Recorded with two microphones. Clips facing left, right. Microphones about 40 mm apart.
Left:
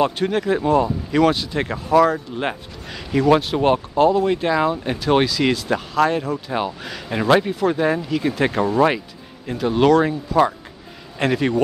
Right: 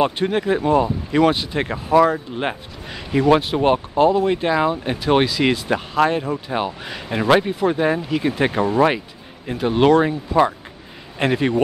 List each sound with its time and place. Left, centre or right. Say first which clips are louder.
0.0 s speech: even; centre